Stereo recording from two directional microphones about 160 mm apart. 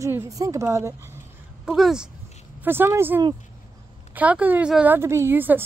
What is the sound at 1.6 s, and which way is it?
Speech, 5° right (ahead or behind).